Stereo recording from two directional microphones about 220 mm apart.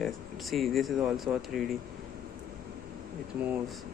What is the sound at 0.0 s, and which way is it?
Speech, centre (ahead or behind).